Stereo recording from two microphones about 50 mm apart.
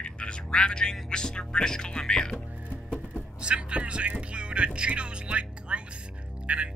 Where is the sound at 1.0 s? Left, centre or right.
Centre.